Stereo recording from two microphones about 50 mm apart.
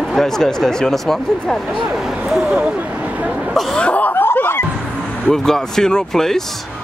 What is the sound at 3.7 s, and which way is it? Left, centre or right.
Cough, left.